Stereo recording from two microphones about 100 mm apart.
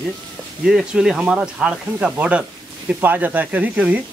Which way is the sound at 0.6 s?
5° right (ahead or behind).